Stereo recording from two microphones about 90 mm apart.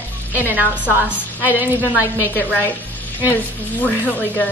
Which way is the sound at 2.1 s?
25° left (ahead or behind).